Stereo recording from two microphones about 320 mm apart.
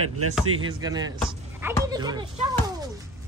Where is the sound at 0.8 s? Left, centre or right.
Centre.